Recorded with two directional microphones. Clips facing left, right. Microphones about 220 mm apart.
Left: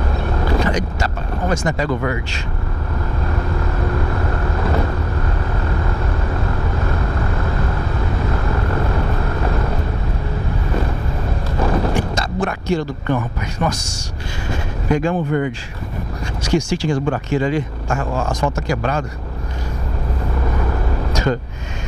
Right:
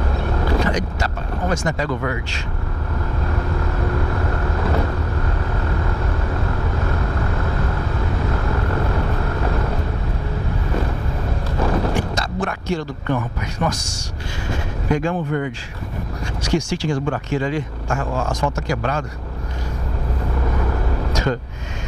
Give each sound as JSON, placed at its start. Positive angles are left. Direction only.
{"t": 0.2, "sound": "vehicle", "side_deg": 20}
{"t": 0.6, "sound": "vehicle", "side_deg": 5}
{"t": 1.5, "sound": "speech", "side_deg": 5}
{"t": 3.3, "sound": "vehicle", "side_deg": 15}
{"t": 11.5, "sound": "a sound", "side_deg": 20}
{"t": 11.9, "sound": "speech", "side_deg": 5}
{"t": 18.7, "sound": "speech", "side_deg": 10}
{"t": 21.1, "sound": "a sound", "side_deg": 10}